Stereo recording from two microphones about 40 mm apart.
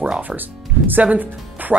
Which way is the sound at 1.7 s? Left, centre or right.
Centre.